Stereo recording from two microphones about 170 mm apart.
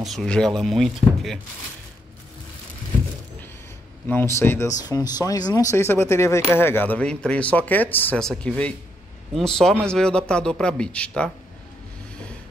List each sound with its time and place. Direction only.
0.0 s a man's voice: centre (ahead or behind)
4.1 s a man's voice: 15° left (ahead or behind)